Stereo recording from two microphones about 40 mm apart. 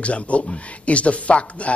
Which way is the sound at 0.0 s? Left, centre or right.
Left.